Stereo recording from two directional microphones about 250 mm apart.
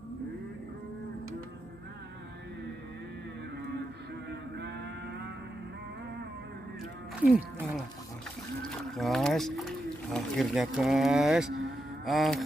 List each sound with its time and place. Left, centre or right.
4.3 s cattle: right
7.2 s speech: centre
12.0 s mantra: centre